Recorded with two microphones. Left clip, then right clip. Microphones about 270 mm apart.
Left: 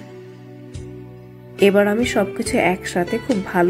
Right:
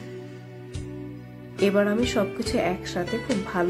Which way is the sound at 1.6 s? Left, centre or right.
Centre.